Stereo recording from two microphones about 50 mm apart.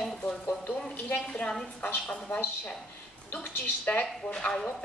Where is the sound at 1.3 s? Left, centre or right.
Centre.